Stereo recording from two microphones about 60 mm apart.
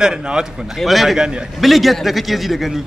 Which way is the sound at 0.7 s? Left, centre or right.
Centre.